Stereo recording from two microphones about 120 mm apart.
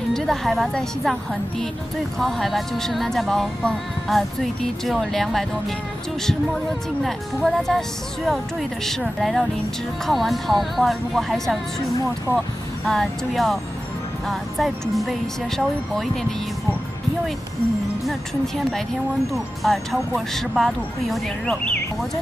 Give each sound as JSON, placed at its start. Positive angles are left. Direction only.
{"t": 0.1, "sound": "speech", "side_deg": 5}
{"t": 2.1, "sound": "speech", "side_deg": 0}
{"t": 12.8, "sound": "speech", "side_deg": 5}
{"t": 19.3, "sound": "speech", "side_deg": 0}